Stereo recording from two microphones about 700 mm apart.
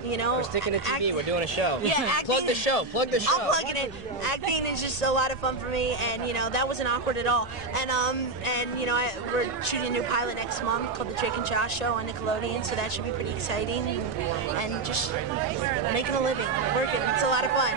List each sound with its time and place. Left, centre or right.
0.6 s a woman's voice: left
16.1 s a woman's voice: left